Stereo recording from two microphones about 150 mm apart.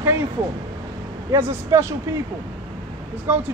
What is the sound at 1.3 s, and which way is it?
Speech, 20° right (ahead or behind).